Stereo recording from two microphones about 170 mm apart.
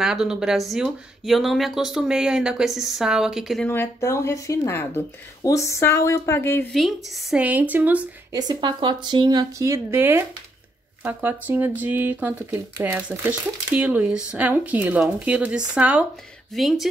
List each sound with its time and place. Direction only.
0.0 s speech: 5° right (ahead or behind)
3.6 s speech: 15° left (ahead or behind)
6.7 s speech: centre (ahead or behind)
8.3 s speech: 25° right (ahead or behind); by 16.8 s centre (ahead or behind)